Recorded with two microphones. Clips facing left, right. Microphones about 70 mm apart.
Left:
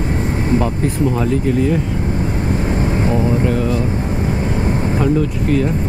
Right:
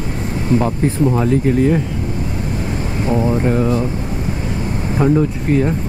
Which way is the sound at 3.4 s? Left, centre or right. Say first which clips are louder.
Right 2 dB; right.